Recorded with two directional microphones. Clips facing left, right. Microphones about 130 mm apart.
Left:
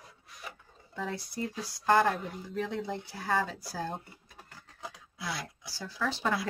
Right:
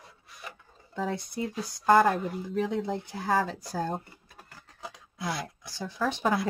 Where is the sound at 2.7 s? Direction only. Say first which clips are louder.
Right 5 dB; centre (ahead or behind).